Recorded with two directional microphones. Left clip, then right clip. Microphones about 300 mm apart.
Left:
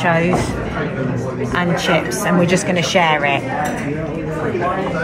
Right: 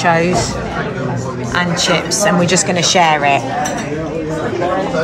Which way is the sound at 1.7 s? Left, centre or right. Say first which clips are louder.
Right 1 dB; right.